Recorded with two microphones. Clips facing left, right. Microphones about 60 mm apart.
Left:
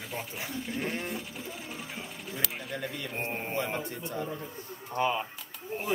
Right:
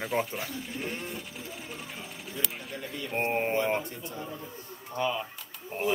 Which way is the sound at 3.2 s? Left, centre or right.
Right.